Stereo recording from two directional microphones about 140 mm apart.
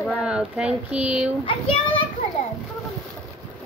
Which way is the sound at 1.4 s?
40° left (ahead or behind).